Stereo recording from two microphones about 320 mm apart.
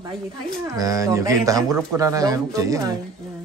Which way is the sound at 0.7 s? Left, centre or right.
Centre.